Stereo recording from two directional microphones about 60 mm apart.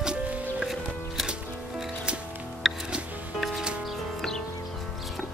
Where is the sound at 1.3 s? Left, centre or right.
Centre.